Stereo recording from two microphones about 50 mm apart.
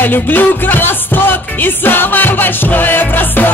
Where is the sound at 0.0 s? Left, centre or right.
Left.